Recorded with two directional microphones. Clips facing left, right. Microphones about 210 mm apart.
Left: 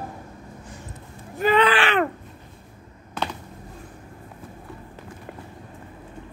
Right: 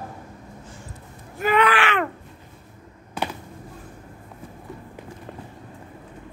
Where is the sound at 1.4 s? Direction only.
30° left (ahead or behind).